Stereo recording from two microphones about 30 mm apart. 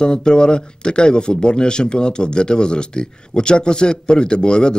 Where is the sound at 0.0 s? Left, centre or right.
Left.